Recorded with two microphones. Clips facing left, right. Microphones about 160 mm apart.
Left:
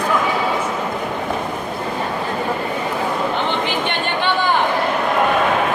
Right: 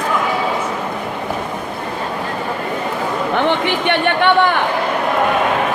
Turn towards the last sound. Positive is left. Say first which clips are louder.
# right 5 dB
turn(degrees=-65)  # may be behind; listen again after turning